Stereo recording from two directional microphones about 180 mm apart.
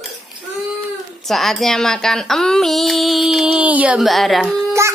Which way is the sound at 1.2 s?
Centre (ahead or behind).